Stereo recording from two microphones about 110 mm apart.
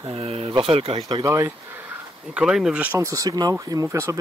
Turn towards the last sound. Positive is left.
turn(degrees=-25)  # may be behind; listen again after turning